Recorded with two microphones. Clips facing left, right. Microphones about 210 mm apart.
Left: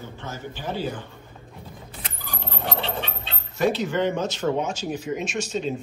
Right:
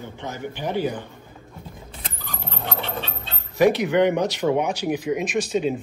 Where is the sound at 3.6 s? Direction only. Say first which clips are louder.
Right 5 dB; 15° right (ahead or behind).